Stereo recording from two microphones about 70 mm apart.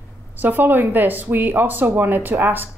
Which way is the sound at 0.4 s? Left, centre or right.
Right.